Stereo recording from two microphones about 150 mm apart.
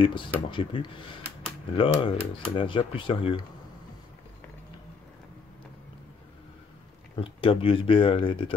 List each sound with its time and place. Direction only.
0.0 s speech: 35° left (ahead or behind)
7.2 s speech: 35° left (ahead or behind)